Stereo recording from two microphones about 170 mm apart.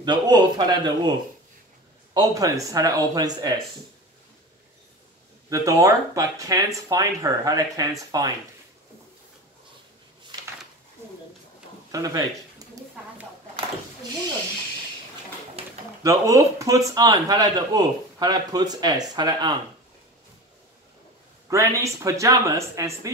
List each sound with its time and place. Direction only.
0.0 s speech: 25° right (ahead or behind)
2.1 s speech: 20° right (ahead or behind)
5.5 s speech: 20° right (ahead or behind)
11.9 s speech: 20° right (ahead or behind)
16.0 s speech: 20° right (ahead or behind)
21.5 s speech: 15° right (ahead or behind)